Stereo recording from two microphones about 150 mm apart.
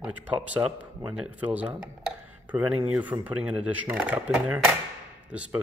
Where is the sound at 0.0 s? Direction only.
10° right (ahead or behind).